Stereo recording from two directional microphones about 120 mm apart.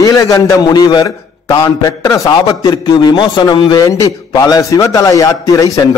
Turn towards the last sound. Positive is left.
turn(degrees=25)  # may be behind; listen again after turning